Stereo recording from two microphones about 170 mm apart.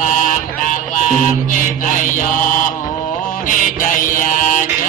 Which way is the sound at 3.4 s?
50° left (ahead or behind).